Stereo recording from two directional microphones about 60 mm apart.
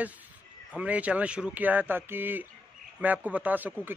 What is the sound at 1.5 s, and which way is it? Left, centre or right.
A man's voice, right.